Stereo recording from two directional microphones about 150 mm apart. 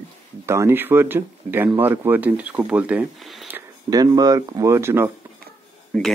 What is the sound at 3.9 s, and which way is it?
Speech, 25° right (ahead or behind).